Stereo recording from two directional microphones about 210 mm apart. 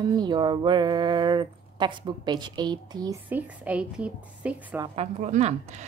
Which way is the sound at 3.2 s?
10° right (ahead or behind).